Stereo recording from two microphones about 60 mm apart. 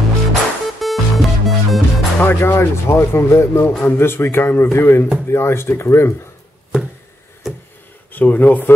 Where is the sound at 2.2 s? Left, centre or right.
Left.